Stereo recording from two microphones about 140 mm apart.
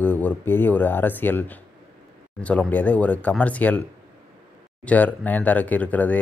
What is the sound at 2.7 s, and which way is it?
Speech, 10° left (ahead or behind).